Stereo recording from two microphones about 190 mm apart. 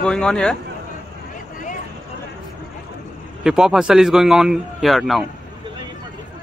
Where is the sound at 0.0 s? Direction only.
5° left (ahead or behind).